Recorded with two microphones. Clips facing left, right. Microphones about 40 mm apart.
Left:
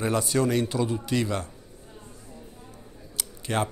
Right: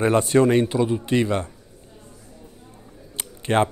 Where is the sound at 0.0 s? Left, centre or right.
Right.